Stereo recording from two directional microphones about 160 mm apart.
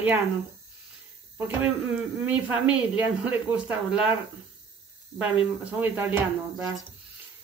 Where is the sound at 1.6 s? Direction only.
10° right (ahead or behind).